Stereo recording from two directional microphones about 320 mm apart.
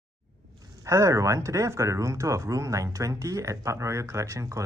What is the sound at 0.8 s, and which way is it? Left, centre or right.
Speech, centre.